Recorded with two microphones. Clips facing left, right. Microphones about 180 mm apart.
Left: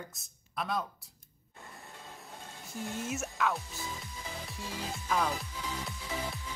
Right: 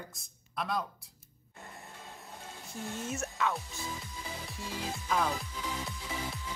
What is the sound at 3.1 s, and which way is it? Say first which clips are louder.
Speech: even; centre (ahead or behind).